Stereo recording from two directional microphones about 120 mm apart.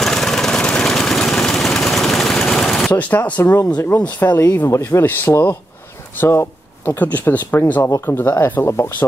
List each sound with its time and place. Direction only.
0.0 s lawn mower: 5° left (ahead or behind)
4.5 s speech: 25° left (ahead or behind)